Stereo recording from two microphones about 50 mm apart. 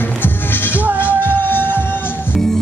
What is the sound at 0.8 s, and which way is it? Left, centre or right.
Music, right.